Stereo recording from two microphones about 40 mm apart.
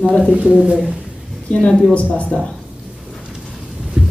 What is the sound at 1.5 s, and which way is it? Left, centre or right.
Speech, left.